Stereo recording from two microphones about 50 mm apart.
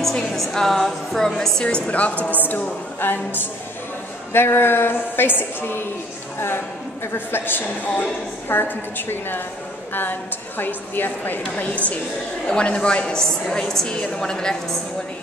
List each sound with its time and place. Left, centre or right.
0.0 s a woman's voice: centre
1.9 s a man's voice: left
10.6 s a man's voice: left
12.4 s a woman's voice: left